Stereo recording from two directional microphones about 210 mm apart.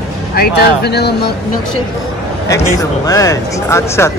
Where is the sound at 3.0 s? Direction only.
15° left (ahead or behind).